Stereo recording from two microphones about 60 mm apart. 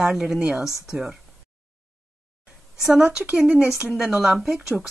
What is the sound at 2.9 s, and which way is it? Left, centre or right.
Speech, centre.